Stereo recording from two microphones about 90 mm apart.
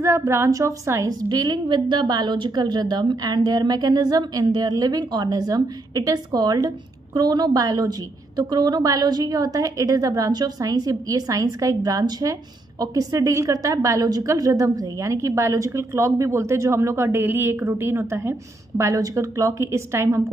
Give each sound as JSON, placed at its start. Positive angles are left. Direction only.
{"t": 0.0, "sound": "a woman's voice", "side_deg": -35}
{"t": 1.0, "sound": "a woman's voice", "side_deg": -50}